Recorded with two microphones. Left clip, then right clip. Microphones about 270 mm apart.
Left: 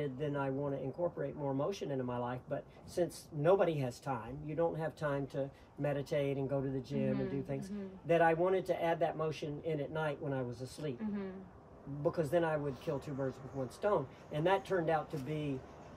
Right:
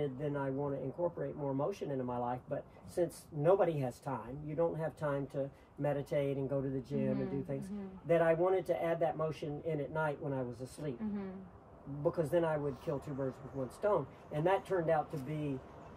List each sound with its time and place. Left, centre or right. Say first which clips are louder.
0.0 s speech: even; centre
12.0 s speech: even; centre